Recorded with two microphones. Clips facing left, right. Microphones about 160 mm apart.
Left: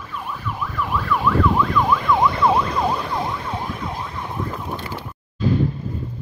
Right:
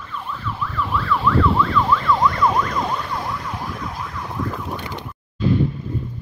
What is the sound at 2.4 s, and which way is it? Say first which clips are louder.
Emergency vehicle: left 1 dB; 30° left (ahead or behind).